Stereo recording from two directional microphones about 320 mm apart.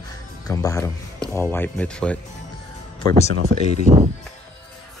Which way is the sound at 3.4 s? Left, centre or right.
Right.